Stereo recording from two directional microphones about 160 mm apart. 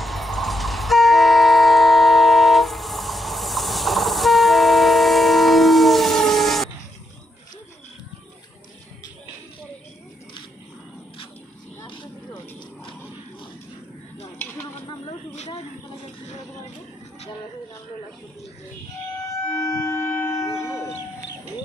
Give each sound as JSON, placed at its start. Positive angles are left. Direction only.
{"t": 0.0, "sound": "train", "side_deg": 0}
{"t": 14.4, "sound": "a sound", "side_deg": 15}
{"t": 15.0, "sound": "snake", "side_deg": 40}
{"t": 19.5, "sound": "shofar", "side_deg": 20}